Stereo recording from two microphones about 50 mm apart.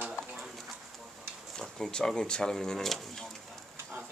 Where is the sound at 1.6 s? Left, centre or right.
Centre.